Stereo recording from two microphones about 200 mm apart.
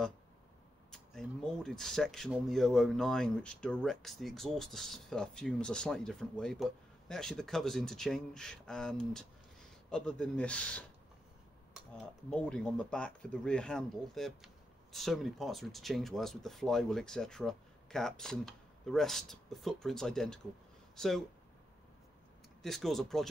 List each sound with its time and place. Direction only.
0.9 s speech: 5° left (ahead or behind)
11.9 s speech: 5° left (ahead or behind)
22.6 s speech: centre (ahead or behind)